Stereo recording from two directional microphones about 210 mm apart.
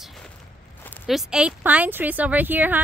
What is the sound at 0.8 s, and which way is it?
Speech, 5° left (ahead or behind).